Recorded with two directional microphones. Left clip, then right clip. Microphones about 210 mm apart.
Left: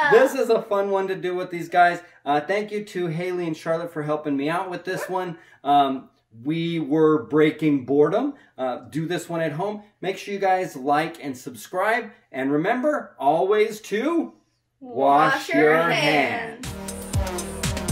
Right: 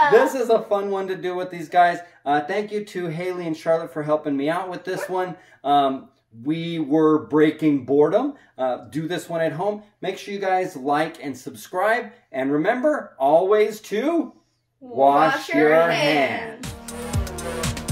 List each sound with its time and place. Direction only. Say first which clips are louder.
0.1 s speech: even; 5° left (ahead or behind)
15.7 s speech: right 2 dB; 20° left (ahead or behind)
16.5 s music: even; centre (ahead or behind)